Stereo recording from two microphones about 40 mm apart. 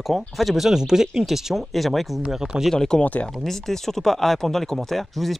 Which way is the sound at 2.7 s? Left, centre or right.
Centre.